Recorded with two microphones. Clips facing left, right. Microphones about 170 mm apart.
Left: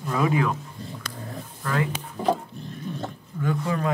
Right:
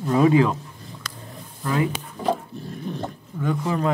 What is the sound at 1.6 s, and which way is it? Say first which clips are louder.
Speech: right 3 dB; 15° right (ahead or behind).